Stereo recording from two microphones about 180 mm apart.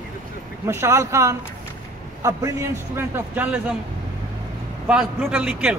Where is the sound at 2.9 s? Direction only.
10° right (ahead or behind).